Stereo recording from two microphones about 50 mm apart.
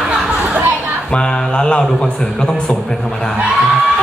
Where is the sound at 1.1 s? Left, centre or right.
Centre.